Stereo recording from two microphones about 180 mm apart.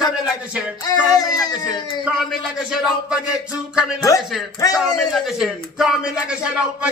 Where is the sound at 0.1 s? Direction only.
5° right (ahead or behind).